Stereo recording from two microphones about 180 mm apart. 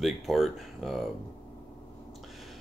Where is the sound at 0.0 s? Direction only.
Centre (ahead or behind).